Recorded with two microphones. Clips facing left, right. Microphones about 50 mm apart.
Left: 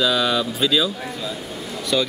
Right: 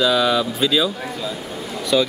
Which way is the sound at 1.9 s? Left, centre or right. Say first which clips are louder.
Right 3 dB; centre.